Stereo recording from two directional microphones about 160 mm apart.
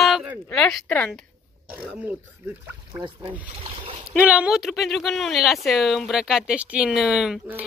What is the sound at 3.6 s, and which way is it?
Speech, 35° right (ahead or behind).